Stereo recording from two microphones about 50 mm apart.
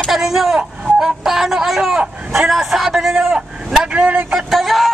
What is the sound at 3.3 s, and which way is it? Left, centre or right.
Vehicle, centre.